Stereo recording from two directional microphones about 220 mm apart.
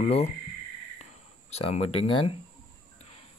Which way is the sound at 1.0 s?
30° left (ahead or behind).